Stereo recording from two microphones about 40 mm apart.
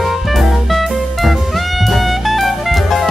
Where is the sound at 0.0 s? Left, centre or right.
Centre.